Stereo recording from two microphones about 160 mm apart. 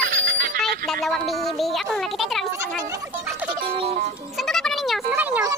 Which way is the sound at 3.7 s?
40° right (ahead or behind).